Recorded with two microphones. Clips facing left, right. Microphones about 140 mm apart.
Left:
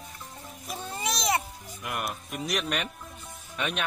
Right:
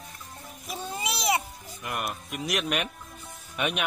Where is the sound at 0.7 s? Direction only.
10° right (ahead or behind).